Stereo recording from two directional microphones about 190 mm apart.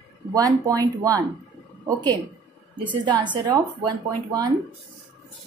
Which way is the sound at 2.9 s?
25° right (ahead or behind).